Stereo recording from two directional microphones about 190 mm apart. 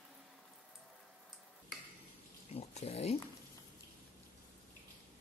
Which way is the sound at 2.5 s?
35° left (ahead or behind).